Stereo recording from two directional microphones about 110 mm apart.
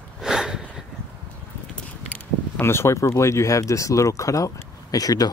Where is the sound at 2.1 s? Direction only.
20° left (ahead or behind).